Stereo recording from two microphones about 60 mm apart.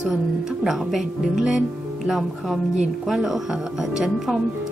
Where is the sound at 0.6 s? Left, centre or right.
Centre.